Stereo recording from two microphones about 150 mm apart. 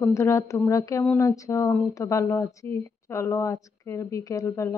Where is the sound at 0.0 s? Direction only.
20° left (ahead or behind).